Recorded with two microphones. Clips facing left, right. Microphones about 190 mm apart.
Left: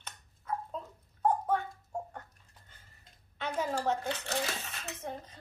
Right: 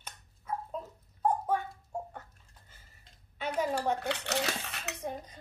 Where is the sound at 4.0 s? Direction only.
70° right (ahead or behind).